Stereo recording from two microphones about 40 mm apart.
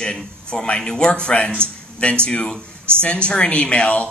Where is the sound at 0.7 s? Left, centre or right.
Centre.